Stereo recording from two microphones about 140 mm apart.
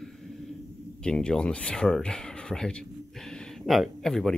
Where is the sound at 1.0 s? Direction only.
5° left (ahead or behind).